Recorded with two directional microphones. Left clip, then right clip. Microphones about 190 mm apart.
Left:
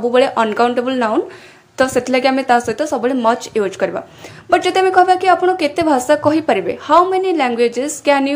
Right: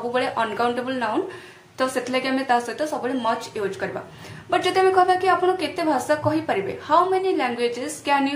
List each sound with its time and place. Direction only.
0.1 s a woman's voice: 40° left (ahead or behind)